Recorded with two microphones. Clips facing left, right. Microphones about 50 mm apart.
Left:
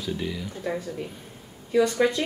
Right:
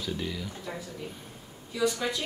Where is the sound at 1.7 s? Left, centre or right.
Left.